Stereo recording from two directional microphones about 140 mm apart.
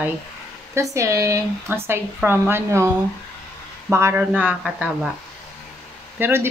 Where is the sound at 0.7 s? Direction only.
20° right (ahead or behind).